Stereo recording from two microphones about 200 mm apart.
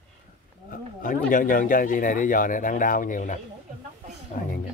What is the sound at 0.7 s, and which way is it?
Speech, 45° left (ahead or behind).